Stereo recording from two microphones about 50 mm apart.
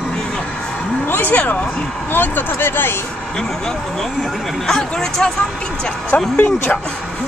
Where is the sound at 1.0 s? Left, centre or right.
Left.